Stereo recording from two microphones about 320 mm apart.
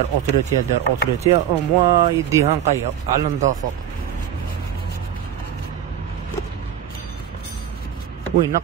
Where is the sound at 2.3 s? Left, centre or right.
Centre.